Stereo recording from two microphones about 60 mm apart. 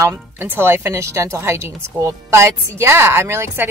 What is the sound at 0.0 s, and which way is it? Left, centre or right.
A woman's voice, right.